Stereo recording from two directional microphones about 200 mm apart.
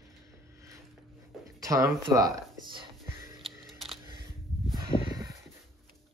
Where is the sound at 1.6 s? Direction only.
15° right (ahead or behind).